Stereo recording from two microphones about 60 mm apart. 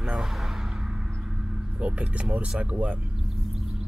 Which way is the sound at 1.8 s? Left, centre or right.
Right.